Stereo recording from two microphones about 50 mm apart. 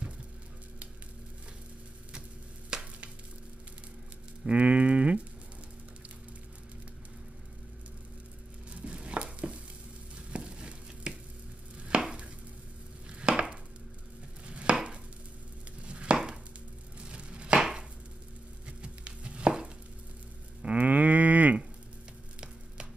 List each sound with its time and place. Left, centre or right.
2.7 s stir: centre
4.5 s cattle: right
8.8 s chopping: right
10.1 s a sound: right
11.9 s chopping: right
13.2 s chopping: centre
17.0 s a sound: right
17.6 s chopping: centre
18.7 s chopping: right
20.6 s livestock: right